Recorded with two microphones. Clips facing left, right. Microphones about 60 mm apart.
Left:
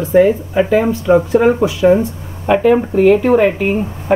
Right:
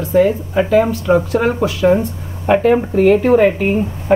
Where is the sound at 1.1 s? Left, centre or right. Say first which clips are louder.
Left 6 dB; centre.